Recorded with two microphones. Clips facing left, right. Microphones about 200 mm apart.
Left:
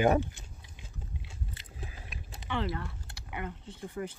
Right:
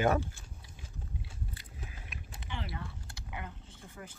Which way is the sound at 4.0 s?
60° left (ahead or behind).